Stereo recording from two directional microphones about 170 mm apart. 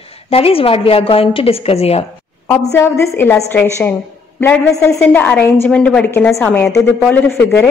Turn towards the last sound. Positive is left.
turn(degrees=15)  # may be behind; listen again after turning